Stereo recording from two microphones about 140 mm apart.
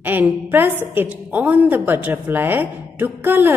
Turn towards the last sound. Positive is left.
turn(degrees=-15)  # may be behind; listen again after turning